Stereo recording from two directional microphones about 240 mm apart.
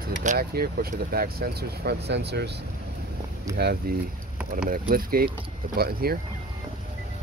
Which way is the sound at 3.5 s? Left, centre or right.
Centre.